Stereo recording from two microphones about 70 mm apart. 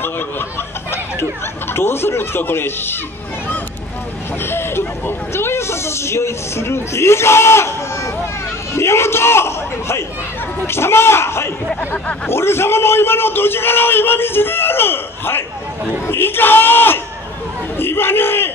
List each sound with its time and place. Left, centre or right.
0.0 s a sound: left
1.7 s a man's voice: left
4.4 s a man's voice: left